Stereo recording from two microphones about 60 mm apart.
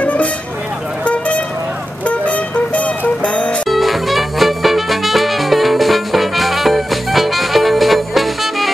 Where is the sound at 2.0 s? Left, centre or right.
Left.